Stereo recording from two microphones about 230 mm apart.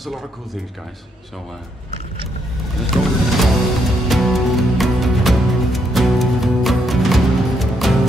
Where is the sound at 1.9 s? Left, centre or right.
Right.